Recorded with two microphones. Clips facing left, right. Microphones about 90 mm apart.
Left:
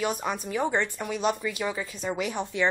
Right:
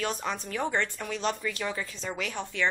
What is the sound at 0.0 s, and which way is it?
Speech, 10° left (ahead or behind).